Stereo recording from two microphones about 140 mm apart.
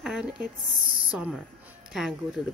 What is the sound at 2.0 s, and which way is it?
Speech, 5° right (ahead or behind).